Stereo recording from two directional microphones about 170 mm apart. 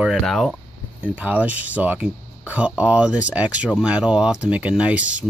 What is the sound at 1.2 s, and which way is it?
Speech, 10° right (ahead or behind).